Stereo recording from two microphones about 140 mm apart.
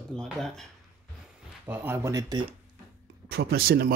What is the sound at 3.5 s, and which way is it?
Speech, 90° right.